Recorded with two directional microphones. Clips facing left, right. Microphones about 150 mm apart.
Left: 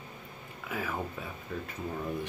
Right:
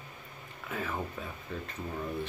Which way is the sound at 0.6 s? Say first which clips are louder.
Left 1 dB; 5° left (ahead or behind).